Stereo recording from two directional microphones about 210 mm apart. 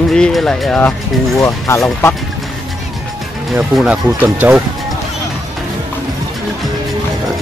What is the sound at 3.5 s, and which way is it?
Speech, 5° right (ahead or behind).